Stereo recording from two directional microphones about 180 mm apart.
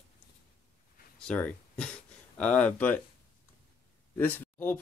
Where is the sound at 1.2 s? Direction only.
5° left (ahead or behind).